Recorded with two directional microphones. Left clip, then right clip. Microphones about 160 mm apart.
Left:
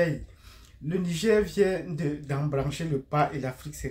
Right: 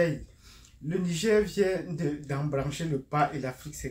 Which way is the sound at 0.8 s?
20° left (ahead or behind).